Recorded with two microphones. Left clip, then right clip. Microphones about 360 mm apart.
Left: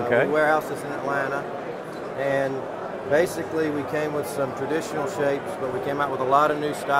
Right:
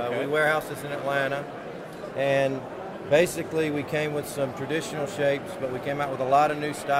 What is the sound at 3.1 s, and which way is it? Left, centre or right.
Speech, right.